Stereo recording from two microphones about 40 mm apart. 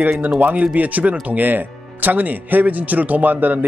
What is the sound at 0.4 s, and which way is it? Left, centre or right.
A man's voice, right.